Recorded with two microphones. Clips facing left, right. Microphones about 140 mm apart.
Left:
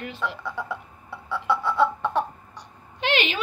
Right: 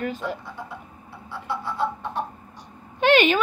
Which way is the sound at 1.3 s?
80° left.